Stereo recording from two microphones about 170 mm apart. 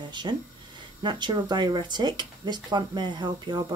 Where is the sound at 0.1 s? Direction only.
25° right (ahead or behind).